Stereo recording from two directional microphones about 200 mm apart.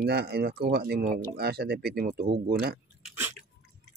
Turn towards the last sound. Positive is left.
turn(degrees=-10)  # may be behind; listen again after turning